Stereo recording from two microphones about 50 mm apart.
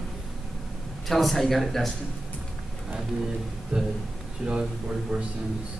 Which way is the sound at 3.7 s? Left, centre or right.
Centre.